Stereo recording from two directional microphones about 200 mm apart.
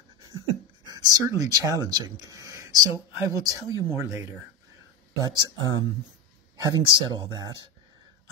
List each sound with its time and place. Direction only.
0.8 s speech: 20° right (ahead or behind)
5.2 s speech: 20° right (ahead or behind)